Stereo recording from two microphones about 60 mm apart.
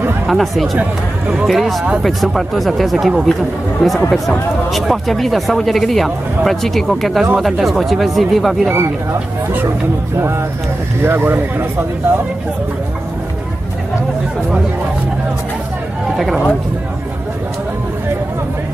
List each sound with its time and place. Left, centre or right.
0.3 s speech: centre
10.1 s speech: right